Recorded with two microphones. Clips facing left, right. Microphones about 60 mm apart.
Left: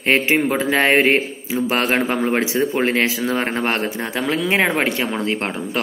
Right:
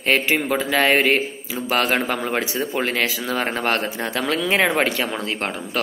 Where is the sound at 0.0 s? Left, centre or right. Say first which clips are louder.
Left 3 dB; left; by 5.0 s centre.